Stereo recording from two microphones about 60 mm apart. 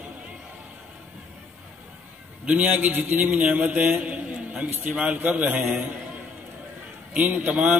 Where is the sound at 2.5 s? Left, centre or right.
Right.